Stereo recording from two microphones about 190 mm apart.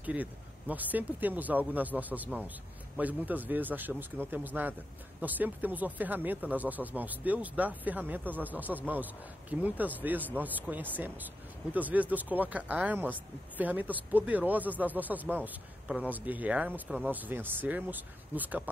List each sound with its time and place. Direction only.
0.0 s speech: 10° right (ahead or behind)